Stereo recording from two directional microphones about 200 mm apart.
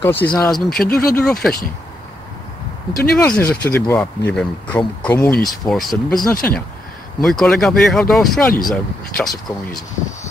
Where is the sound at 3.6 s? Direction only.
10° left (ahead or behind).